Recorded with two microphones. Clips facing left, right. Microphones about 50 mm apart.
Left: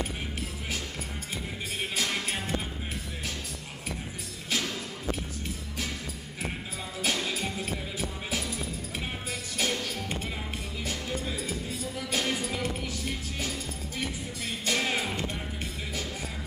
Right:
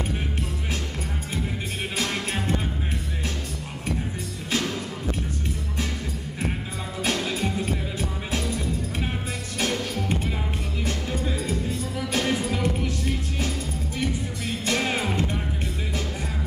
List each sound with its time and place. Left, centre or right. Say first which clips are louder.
2.0 s music: right 4 dB; centre
4.5 s music: right 5 dB; centre
7.0 s music: right 4 dB; centre
9.6 s music: right 4 dB; centre